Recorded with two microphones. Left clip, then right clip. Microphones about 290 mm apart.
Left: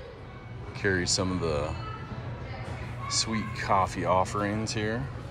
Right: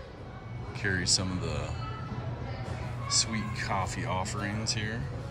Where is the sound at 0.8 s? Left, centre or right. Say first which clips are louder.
Left 2 dB; centre.